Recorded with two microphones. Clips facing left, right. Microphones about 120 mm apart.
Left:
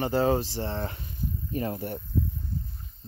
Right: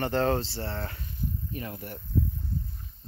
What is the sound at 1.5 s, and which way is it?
Speech, 30° left (ahead or behind).